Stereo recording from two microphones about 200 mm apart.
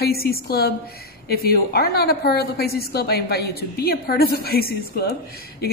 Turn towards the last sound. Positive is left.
turn(degrees=55)  # may be behind; listen again after turning